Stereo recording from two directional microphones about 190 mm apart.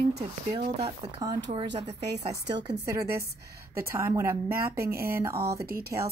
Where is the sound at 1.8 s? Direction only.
60° right (ahead or behind).